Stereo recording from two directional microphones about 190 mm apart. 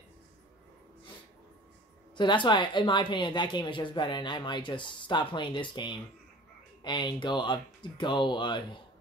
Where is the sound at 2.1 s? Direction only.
25° left (ahead or behind).